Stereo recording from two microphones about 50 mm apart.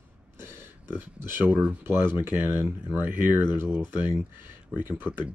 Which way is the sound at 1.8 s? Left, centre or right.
Right.